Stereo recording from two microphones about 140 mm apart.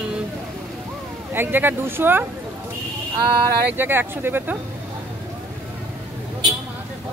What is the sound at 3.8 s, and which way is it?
Speech, 15° right (ahead or behind).